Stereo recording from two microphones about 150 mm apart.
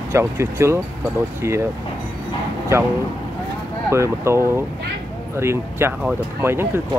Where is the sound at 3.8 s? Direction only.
20° right (ahead or behind).